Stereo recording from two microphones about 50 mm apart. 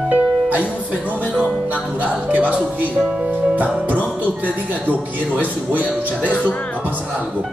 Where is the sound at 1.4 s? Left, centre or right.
Right.